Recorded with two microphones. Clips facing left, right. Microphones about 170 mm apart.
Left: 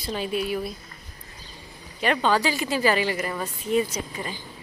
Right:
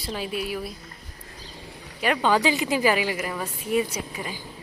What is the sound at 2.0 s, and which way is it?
A woman's voice, 10° right (ahead or behind).